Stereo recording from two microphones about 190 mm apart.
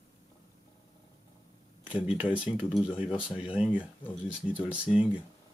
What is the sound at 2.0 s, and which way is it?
Speech, 5° right (ahead or behind).